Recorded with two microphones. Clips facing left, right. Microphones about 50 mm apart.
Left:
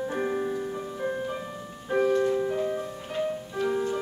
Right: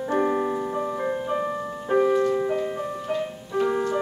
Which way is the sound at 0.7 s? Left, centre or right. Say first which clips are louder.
Right 5 dB; right.